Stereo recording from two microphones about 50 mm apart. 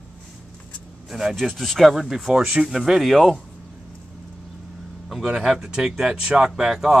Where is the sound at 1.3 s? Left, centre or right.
Centre.